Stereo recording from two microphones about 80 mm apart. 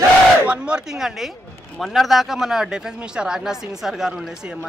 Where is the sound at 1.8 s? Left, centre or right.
Centre.